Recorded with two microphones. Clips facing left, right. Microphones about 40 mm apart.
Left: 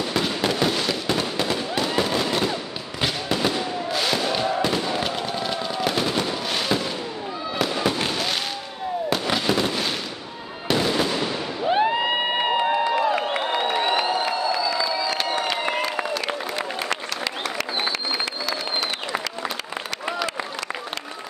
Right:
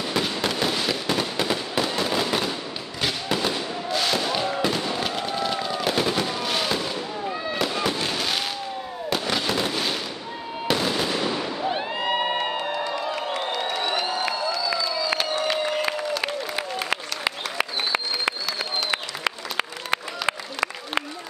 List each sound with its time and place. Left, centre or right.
0.1 s fireworks: centre
11.6 s crowd: centre
16.9 s applause: centre
18.9 s applause: right
20.2 s a sound: right